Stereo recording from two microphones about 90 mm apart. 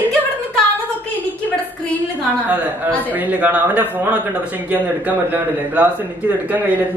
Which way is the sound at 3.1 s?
20° right (ahead or behind).